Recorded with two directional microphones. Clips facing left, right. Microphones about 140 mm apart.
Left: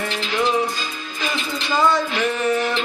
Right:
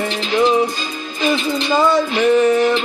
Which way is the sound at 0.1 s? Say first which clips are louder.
Right 6 dB; 20° right (ahead or behind).